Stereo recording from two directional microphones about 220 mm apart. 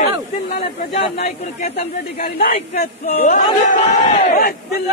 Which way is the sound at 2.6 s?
30° left (ahead or behind).